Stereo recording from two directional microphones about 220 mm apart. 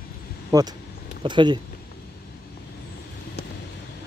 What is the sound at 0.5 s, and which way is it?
Speech, 15° right (ahead or behind).